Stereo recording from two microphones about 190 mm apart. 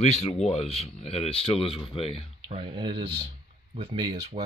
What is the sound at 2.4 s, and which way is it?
Speech, 25° right (ahead or behind).